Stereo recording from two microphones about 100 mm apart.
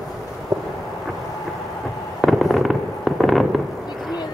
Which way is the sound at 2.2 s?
Centre (ahead or behind).